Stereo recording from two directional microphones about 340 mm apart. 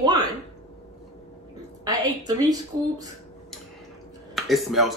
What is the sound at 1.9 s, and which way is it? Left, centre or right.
Speech, centre.